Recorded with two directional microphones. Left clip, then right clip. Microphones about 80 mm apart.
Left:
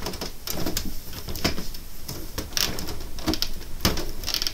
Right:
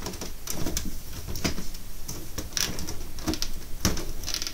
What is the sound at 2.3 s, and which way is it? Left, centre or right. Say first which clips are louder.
Printer: left 4 dB; right.